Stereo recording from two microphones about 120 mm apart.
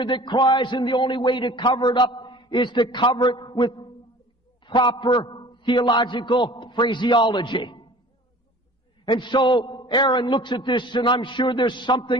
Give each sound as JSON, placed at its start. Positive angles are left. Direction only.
{"t": 0.0, "sound": "a man's voice", "side_deg": 40}
{"t": 9.0, "sound": "a man's voice", "side_deg": 40}